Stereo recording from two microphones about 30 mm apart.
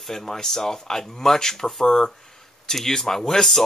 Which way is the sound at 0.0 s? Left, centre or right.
Centre.